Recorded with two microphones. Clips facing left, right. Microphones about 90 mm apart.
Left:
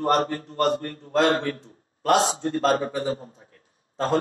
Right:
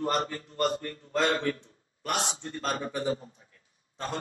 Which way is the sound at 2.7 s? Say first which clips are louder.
Left 8 dB; 40° left (ahead or behind).